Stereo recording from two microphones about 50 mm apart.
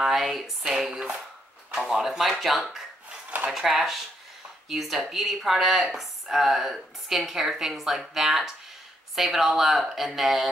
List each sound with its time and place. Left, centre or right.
0.0 s a woman's voice: centre
3.3 s a sound: right
3.5 s a woman's voice: centre